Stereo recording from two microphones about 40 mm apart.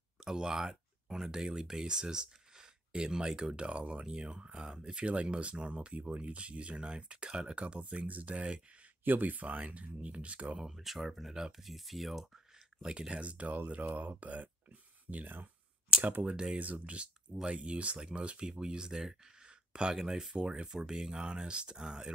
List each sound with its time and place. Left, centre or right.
0.2 s speech: centre; by 8.6 s right
9.0 s speech: right
10.7 s speech: centre
12.8 s speech: right
13.7 s speech: right
17.5 s speech: right
17.9 s speech: centre
18.2 s speech: right
18.5 s speech: centre
19.4 s a sound: right
19.9 s speech: centre
20.4 s speech: right